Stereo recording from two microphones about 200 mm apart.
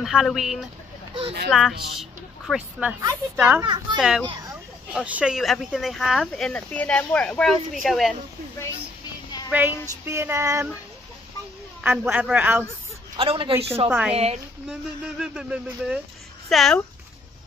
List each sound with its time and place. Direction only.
0.0 s a woman's voice: centre (ahead or behind)
3.0 s child singing: 15° right (ahead or behind)
4.0 s speech: 5° right (ahead or behind)
9.5 s child singing: 10° right (ahead or behind)
11.8 s child singing: 10° right (ahead or behind)
13.1 s a woman's voice: 25° right (ahead or behind)
13.8 s child singing: 10° right (ahead or behind)
14.1 s a woman's voice: 30° right (ahead or behind)
14.7 s speech: 5° right (ahead or behind)